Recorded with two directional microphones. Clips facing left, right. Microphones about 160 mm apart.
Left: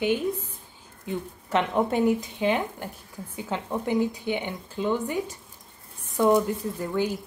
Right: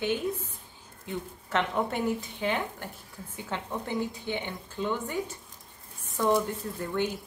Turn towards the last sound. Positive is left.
turn(degrees=15)  # may be behind; listen again after turning